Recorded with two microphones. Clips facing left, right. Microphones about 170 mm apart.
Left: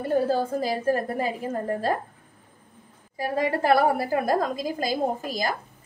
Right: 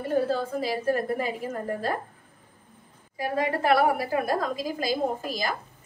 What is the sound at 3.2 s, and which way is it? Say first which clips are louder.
A woman's voice: left 2 dB; 40° left (ahead or behind).